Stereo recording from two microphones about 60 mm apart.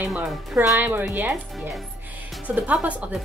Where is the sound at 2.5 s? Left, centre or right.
Right.